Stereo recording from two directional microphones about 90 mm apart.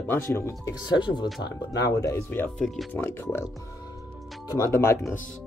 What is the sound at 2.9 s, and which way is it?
Speech, 25° left (ahead or behind).